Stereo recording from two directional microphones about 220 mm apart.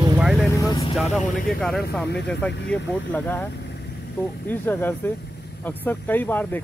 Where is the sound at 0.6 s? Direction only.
15° left (ahead or behind).